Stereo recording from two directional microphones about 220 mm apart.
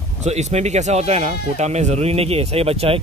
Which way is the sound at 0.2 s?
30° right (ahead or behind).